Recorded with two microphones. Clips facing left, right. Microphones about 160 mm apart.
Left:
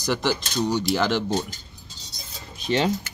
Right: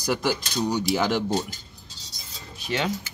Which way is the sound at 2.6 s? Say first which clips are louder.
Left 5 dB; 30° left (ahead or behind).